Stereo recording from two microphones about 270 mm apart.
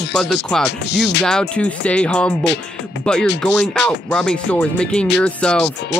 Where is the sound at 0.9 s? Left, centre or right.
Left.